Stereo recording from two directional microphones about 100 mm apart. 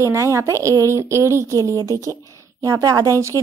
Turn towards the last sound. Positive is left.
turn(degrees=-35)  # may be behind; listen again after turning